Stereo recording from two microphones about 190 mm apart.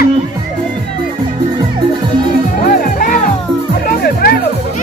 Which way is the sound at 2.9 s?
45° left (ahead or behind).